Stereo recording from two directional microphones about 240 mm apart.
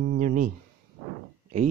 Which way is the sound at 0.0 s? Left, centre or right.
Right.